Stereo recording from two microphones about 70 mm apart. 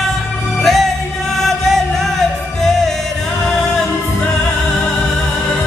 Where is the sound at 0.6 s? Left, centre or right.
Centre.